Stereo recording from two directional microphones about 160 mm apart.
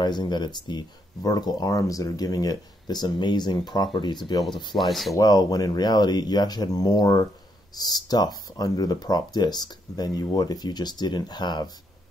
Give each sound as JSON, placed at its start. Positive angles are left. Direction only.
{"t": 0.0, "sound": "speech", "side_deg": 25}
{"t": 4.7, "sound": "speech", "side_deg": 0}
{"t": 5.1, "sound": "speech", "side_deg": 25}